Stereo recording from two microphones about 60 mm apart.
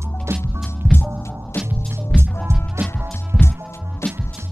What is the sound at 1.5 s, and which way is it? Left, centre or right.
Music, left.